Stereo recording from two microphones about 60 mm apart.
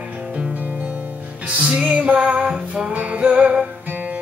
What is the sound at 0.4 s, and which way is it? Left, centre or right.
Music, right.